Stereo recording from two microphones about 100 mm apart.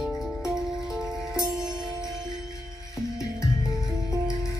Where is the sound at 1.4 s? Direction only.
40° right (ahead or behind).